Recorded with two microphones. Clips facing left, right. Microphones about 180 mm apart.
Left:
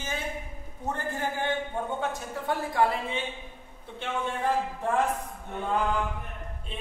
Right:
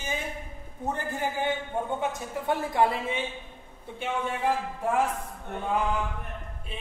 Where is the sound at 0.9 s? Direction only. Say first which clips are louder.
Right 1 dB; 15° right (ahead or behind).